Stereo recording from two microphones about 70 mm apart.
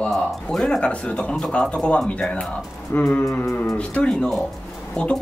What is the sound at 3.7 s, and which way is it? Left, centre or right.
Speech, centre.